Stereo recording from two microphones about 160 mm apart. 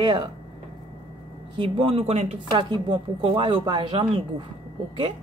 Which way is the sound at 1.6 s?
30° right (ahead or behind).